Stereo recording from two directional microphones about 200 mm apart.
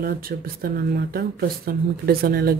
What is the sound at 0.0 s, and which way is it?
Speech, 50° right (ahead or behind).